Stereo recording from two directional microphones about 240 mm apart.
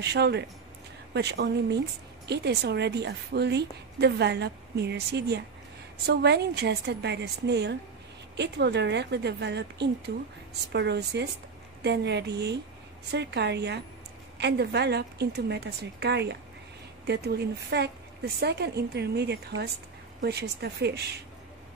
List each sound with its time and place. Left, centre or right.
0.0 s a woman's voice: right